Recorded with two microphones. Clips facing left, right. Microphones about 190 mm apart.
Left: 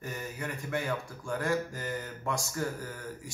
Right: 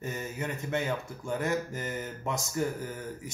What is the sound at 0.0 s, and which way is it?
Speech, 20° right (ahead or behind).